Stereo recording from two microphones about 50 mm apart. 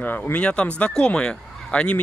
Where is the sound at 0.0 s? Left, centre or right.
Left.